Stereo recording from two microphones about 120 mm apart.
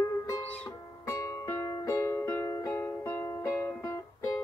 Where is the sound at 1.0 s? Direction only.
25° left (ahead or behind).